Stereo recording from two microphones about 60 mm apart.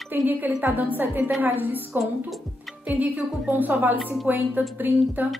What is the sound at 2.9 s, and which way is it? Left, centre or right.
A woman's voice, right.